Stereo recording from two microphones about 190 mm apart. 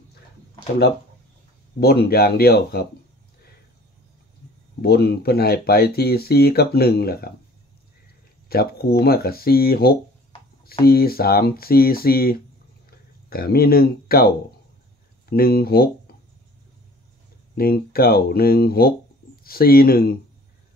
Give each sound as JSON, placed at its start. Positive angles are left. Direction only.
{"t": 1.8, "sound": "speech", "side_deg": 55}
{"t": 4.8, "sound": "speech", "side_deg": 55}
{"t": 8.5, "sound": "speech", "side_deg": 55}
{"t": 17.6, "sound": "speech", "side_deg": 50}